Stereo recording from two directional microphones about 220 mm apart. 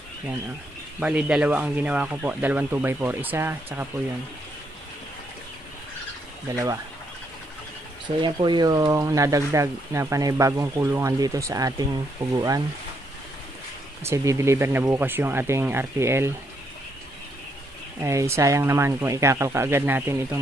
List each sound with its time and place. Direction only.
0.9 s speech: 5° right (ahead or behind)
6.5 s speech: 15° right (ahead or behind)
8.2 s speech: 20° right (ahead or behind)
14.0 s speech: 15° right (ahead or behind)
18.0 s speech: 10° right (ahead or behind)